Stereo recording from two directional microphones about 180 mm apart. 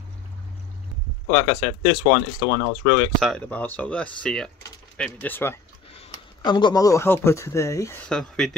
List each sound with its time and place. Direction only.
1.3 s speech: 15° left (ahead or behind)
3.2 s speech: 5° left (ahead or behind)
5.9 s speech: 25° left (ahead or behind)
8.1 s speech: 5° left (ahead or behind)